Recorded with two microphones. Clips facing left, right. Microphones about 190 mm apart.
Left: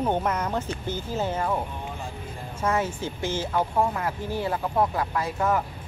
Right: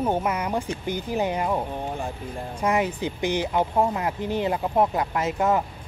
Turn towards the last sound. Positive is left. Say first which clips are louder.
# right 2 dB
turn(degrees=-20)  # may be behind; listen again after turning